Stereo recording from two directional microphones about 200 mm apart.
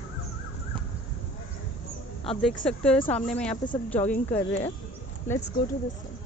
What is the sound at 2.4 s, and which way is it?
Speech, 5° left (ahead or behind).